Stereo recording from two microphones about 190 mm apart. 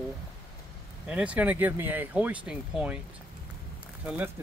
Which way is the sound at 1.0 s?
5° right (ahead or behind).